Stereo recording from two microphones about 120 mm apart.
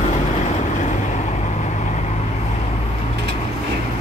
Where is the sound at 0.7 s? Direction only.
80° left.